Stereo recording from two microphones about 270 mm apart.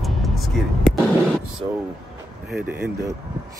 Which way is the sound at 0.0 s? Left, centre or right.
Centre.